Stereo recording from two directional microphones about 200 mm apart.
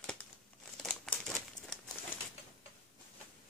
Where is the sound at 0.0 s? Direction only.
5° left (ahead or behind).